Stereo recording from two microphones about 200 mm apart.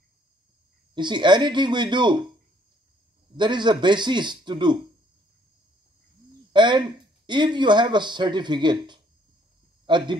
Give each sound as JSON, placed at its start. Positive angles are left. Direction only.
{"t": 0.9, "sound": "speech", "side_deg": -20}
{"t": 3.3, "sound": "speech", "side_deg": -20}
{"t": 6.5, "sound": "speech", "side_deg": -20}